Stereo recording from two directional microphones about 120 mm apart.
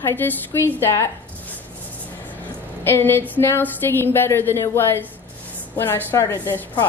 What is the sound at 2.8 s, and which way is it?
A woman's voice, 20° left (ahead or behind).